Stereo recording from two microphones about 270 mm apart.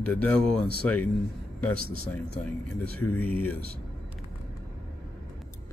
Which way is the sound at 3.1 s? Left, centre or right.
Centre.